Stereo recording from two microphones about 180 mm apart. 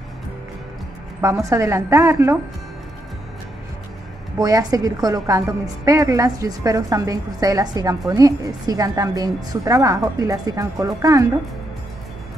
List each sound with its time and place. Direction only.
1.2 s a woman's voice: 15° right (ahead or behind)
4.4 s a woman's voice: 20° right (ahead or behind)